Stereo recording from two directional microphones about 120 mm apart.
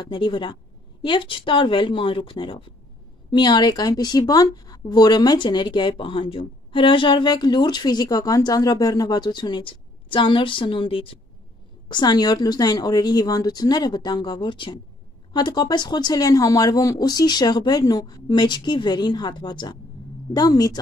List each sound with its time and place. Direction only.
0.0 s speech: 40° left (ahead or behind)
11.9 s speech: 35° left (ahead or behind)